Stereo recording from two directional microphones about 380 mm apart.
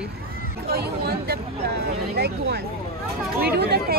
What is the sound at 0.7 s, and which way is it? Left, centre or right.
Speech, right.